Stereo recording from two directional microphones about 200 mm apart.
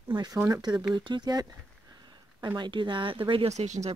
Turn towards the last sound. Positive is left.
turn(degrees=-35)  # may be behind; listen again after turning